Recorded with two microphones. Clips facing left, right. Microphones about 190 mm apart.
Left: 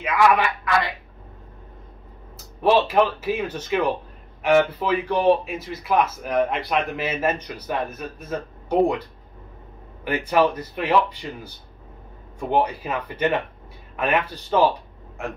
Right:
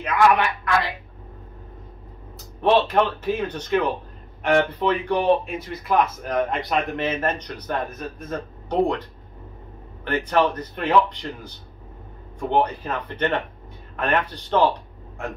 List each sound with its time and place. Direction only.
0.0 s speech: 5° left (ahead or behind)
2.3 s a man's voice: 5° left (ahead or behind)
10.0 s a man's voice: 10° left (ahead or behind)